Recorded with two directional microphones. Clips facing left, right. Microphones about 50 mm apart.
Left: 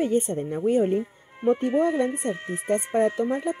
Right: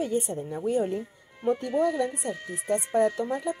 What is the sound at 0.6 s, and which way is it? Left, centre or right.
Speech, left.